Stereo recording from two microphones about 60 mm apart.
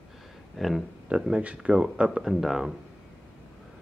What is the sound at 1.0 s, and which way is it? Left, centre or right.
Speech, centre.